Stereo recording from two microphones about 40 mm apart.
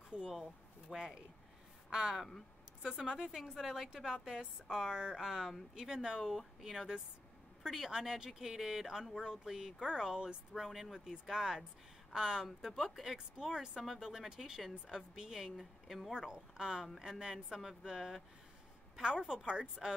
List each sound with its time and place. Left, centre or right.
0.1 s speech: right; by 5.7 s centre
5.8 s speech: centre
17.5 s speech: centre; by 19.9 s right